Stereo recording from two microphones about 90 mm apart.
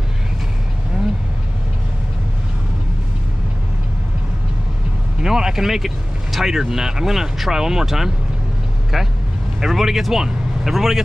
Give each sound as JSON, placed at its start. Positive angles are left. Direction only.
{"t": 5.2, "sound": "vehicle", "side_deg": -5}
{"t": 6.3, "sound": "speech", "side_deg": -5}